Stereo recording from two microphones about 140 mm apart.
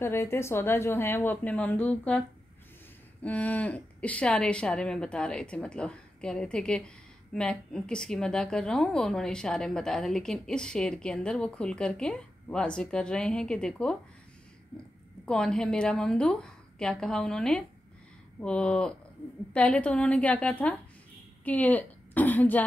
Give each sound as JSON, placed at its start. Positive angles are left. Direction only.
{"t": 0.0, "sound": "a woman's voice", "side_deg": 15}
{"t": 15.2, "sound": "a woman's voice", "side_deg": 5}